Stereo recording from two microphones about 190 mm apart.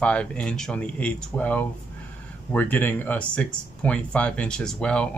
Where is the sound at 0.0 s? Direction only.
5° left (ahead or behind).